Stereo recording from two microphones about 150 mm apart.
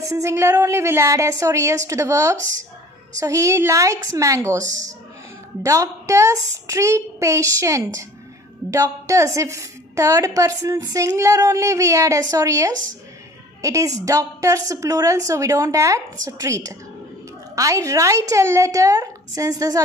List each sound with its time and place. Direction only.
0.1 s a woman's voice: 20° right (ahead or behind)
4.6 s speech: 55° right (ahead or behind)
5.6 s a woman's voice: 20° right (ahead or behind)